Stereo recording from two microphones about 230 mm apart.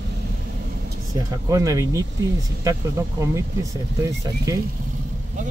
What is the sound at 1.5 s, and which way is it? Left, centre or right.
Speech, centre.